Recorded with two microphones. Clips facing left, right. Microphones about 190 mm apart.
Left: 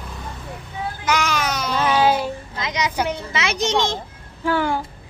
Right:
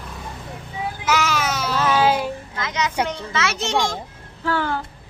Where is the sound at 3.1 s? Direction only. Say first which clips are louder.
Left 1 dB; 15° left (ahead or behind).